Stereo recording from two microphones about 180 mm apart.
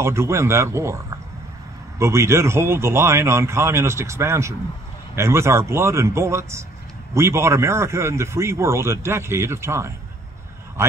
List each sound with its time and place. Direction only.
0.0 s a man's voice: 15° right (ahead or behind)